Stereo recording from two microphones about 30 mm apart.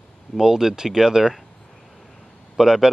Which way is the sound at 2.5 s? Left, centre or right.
Centre.